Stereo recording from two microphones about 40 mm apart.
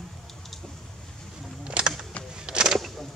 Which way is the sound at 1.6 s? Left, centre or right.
Right.